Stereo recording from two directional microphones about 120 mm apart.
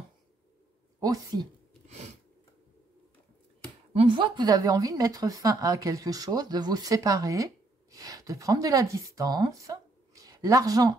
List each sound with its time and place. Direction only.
0.9 s a woman's voice: 30° right (ahead or behind)
1.9 s a sound: 70° right (ahead or behind)
3.9 s a woman's voice: 50° right (ahead or behind); by 10.9 s 30° right (ahead or behind)